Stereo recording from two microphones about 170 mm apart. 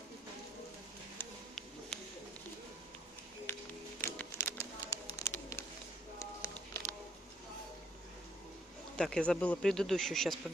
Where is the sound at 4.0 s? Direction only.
15° left (ahead or behind).